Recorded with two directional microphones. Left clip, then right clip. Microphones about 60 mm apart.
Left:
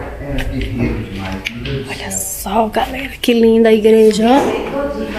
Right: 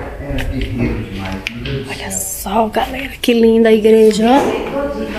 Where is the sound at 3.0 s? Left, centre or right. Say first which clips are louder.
Even; left.